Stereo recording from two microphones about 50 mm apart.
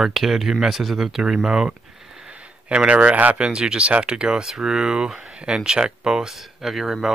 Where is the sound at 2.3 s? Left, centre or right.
Right; by 7.1 s centre.